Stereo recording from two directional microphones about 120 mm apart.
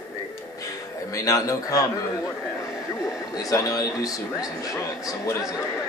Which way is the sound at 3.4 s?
30° left (ahead or behind).